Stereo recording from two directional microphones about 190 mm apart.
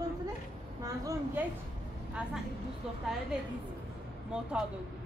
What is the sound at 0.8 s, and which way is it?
Speech, 15° right (ahead or behind).